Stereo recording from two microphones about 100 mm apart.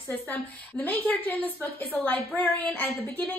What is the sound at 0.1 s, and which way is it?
A woman's voice, 15° left (ahead or behind).